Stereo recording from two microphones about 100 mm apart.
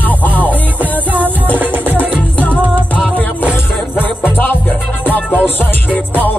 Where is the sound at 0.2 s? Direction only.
15° left (ahead or behind).